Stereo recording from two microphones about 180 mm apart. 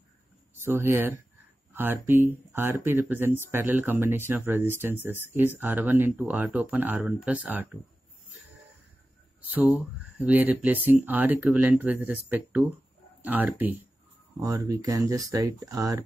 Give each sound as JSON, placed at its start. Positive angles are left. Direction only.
{"t": 0.7, "sound": "speech", "side_deg": -15}
{"t": 9.5, "sound": "speech", "side_deg": -10}